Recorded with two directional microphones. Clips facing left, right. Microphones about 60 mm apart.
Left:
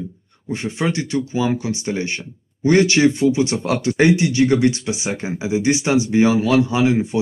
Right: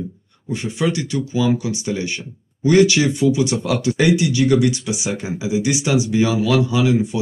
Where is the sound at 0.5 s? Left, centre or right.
Left.